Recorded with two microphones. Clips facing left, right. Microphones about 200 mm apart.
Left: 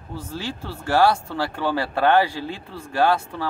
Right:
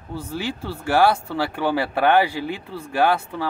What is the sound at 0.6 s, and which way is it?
Speech, 15° right (ahead or behind).